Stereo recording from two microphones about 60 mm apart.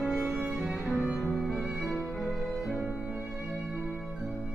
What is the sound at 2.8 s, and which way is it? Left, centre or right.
Music, right.